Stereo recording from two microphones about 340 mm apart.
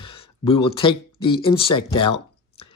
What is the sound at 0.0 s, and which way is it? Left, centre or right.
Speech, centre.